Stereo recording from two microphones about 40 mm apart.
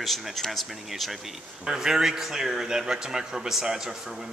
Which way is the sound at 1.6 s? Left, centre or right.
Centre.